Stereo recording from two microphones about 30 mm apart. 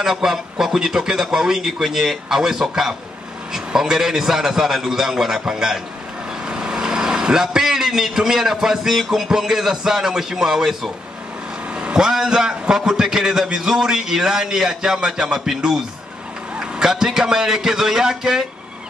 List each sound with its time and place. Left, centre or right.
0.0 s a man's voice: centre
6.5 s a man's voice: right; by 10.9 s centre
11.9 s a man's voice: centre
16.9 s a man's voice: centre